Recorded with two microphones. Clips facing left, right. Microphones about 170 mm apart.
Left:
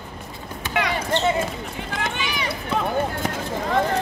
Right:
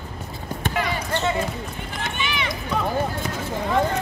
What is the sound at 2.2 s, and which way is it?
Run, 40° left (ahead or behind).